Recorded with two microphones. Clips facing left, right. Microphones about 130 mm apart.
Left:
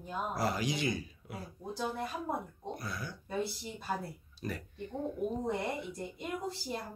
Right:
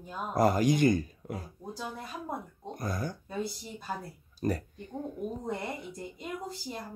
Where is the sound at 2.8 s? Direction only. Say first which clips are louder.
Right 12 dB; 45° right (ahead or behind).